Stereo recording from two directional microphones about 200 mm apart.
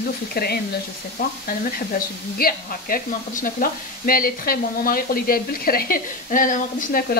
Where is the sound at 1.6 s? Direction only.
45° left (ahead or behind).